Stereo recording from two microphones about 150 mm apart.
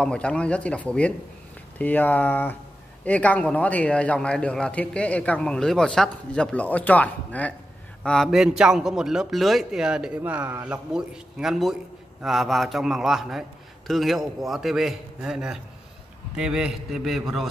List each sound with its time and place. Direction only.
0.0 s a man's voice: 5° left (ahead or behind)